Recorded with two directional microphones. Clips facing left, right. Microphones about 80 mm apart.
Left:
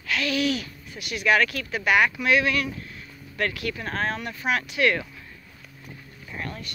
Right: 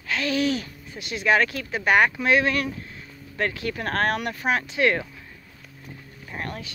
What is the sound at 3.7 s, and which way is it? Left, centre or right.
Speech, right.